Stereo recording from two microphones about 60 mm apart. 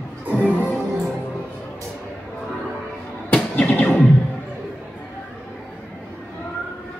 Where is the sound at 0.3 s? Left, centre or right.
Right.